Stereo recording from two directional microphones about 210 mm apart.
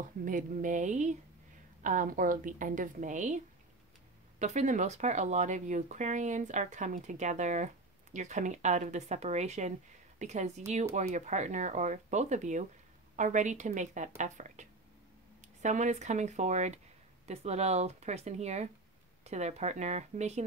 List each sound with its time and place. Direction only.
0.0 s speech: 40° right (ahead or behind)
4.4 s speech: 35° right (ahead or behind)